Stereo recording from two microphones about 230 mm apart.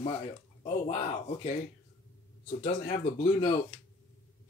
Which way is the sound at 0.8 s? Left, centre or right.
Left.